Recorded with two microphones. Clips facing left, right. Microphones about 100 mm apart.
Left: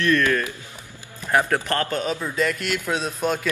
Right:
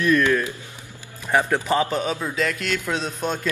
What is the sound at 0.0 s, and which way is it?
Speech, 5° right (ahead or behind).